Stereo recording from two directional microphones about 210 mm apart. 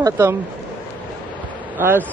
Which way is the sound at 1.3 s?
5° left (ahead or behind).